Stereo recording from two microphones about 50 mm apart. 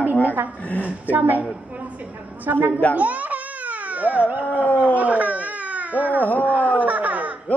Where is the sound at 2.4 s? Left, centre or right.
Right.